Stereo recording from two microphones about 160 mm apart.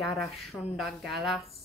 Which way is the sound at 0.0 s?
Centre (ahead or behind).